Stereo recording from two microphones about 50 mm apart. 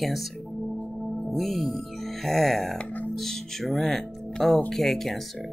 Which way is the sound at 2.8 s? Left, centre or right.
Left.